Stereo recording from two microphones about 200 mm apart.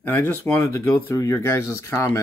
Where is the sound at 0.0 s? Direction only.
10° left (ahead or behind).